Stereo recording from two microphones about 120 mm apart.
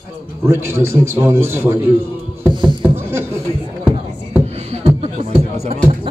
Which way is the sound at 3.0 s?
20° right (ahead or behind).